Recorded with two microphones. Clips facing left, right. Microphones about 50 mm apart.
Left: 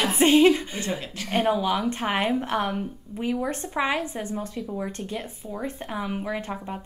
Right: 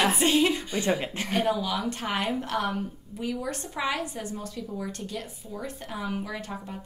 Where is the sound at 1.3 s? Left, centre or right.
Left.